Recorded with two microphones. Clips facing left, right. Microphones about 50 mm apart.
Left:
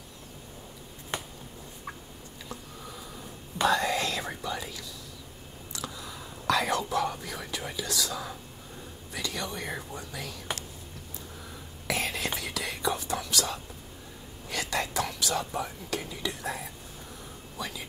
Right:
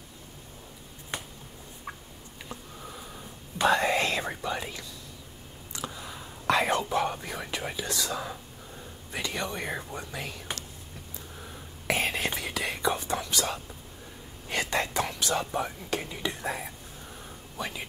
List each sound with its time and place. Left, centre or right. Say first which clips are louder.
2.5 s a sound: right 1 dB; right
3.6 s whispering: right 2 dB; right
4.4 s speech: right 2 dB; right
5.7 s whispering: right 1 dB; right
7.5 s speech: even; right
11.4 s whispering: right 3 dB; right
14.5 s speech: right 2 dB; right
16.2 s speech: right 2 dB; right